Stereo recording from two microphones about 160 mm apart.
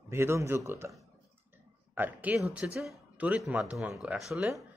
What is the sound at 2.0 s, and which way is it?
Speech, 10° right (ahead or behind).